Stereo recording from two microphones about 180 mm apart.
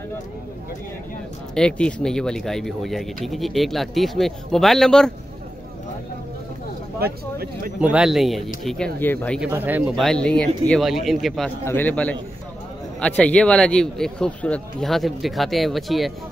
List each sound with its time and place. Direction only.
1.5 s speech: 5° left (ahead or behind)
7.0 s speech: 60° right (ahead or behind)
7.8 s speech: 5° right (ahead or behind)
9.5 s a man's voice: 10° right (ahead or behind)